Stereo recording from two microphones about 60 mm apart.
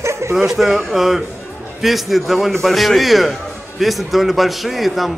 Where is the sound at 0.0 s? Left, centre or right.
Right.